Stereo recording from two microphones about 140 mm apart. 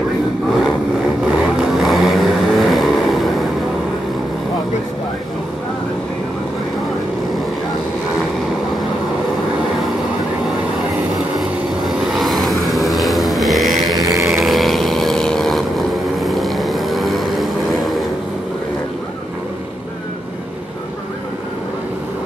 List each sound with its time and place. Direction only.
1.6 s vehicle: centre (ahead or behind)
11.3 s vehicle: centre (ahead or behind)
13.9 s music: 25° right (ahead or behind)
14.2 s vehicle: centre (ahead or behind)